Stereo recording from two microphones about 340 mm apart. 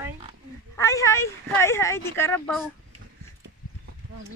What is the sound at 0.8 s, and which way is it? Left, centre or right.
A woman's voice, centre.